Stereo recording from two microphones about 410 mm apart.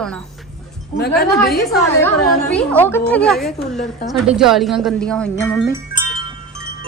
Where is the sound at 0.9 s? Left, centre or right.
Left.